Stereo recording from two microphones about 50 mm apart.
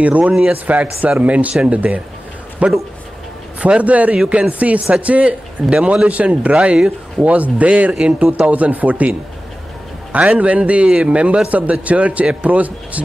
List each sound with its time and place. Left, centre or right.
0.0 s a man's voice: right
5.6 s a man's voice: centre
10.1 s a man's voice: right